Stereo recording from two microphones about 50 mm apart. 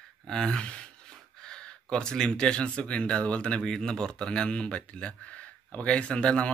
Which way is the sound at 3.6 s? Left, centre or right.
Centre.